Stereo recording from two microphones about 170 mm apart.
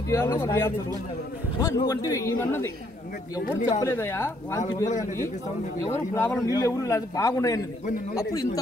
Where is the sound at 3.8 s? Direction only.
15° left (ahead or behind).